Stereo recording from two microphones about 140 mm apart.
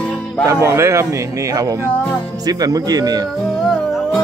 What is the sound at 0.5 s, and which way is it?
Speech, 20° right (ahead or behind).